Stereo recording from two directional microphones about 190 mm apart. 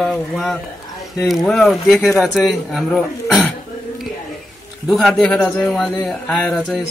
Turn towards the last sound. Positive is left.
turn(degrees=0)  # may be behind; listen again after turning